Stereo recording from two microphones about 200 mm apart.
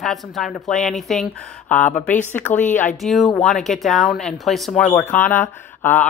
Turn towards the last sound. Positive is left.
turn(degrees=10)  # may be behind; listen again after turning